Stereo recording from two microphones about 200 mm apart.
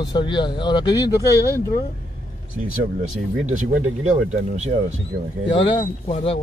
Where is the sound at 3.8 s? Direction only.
90° right.